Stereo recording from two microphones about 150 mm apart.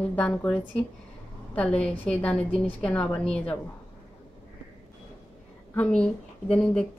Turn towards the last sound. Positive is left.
turn(degrees=5)  # may be behind; listen again after turning